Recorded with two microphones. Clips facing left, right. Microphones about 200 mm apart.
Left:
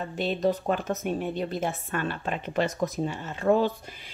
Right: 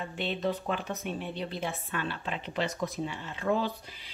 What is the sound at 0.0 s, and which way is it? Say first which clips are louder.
Speech: left 6 dB; 40° left (ahead or behind).